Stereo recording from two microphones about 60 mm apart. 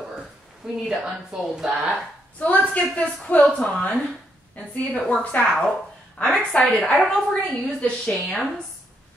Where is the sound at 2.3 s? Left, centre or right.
Left.